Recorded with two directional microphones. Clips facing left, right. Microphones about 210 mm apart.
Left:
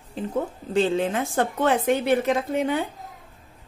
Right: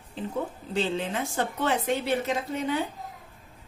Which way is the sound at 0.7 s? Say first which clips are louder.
Left 6 dB; 50° left (ahead or behind).